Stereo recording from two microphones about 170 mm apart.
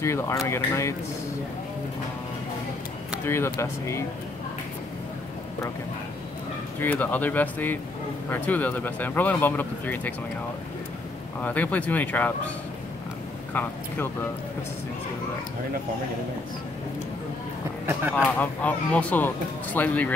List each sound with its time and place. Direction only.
0.0 s speech: 15° left (ahead or behind)
3.3 s speech: 15° left (ahead or behind)
6.8 s speech: 10° left (ahead or behind)
11.4 s speech: 10° left (ahead or behind)
13.5 s speech: 10° left (ahead or behind)
18.1 s speech: 10° left (ahead or behind)